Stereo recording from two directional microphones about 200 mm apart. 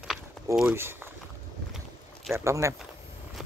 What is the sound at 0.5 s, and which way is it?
Speech, 10° right (ahead or behind).